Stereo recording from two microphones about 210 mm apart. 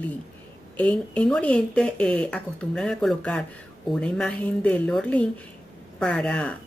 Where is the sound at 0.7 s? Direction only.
5° left (ahead or behind).